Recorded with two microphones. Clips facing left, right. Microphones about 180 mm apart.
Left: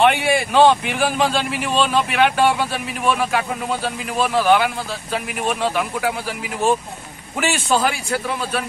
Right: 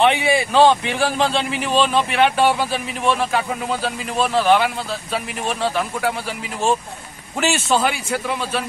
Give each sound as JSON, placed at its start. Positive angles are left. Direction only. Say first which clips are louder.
{"t": 0.0, "sound": "a man's voice", "louder": "even", "side_deg": 0}